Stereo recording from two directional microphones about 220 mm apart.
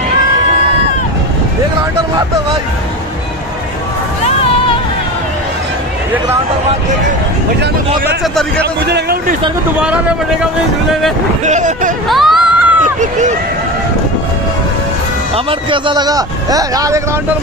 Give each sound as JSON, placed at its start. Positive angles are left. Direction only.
{"t": 8.8, "sound": "a man's voice", "side_deg": -45}
{"t": 11.4, "sound": "speech", "side_deg": -35}
{"t": 12.1, "sound": "a sound", "side_deg": 0}
{"t": 13.0, "sound": "speech", "side_deg": -35}
{"t": 15.3, "sound": "a man's voice", "side_deg": -20}